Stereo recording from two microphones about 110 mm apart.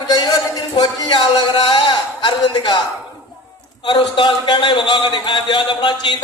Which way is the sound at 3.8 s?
45° left (ahead or behind).